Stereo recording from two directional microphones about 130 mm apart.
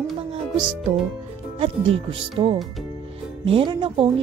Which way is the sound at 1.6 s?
45° right (ahead or behind).